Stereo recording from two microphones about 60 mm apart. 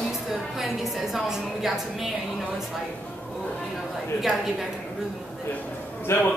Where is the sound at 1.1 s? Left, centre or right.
Centre.